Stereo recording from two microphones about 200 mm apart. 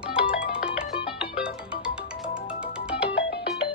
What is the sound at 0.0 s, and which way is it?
Music, 5° right (ahead or behind).